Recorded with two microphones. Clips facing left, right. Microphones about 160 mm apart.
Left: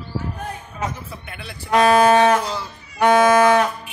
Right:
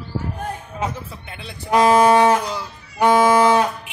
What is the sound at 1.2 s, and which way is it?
Speech, 20° right (ahead or behind).